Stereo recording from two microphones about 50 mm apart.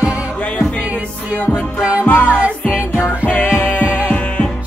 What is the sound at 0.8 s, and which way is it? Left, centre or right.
Music, right.